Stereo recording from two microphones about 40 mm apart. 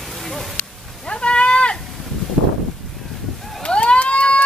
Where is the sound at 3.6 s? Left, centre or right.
Left.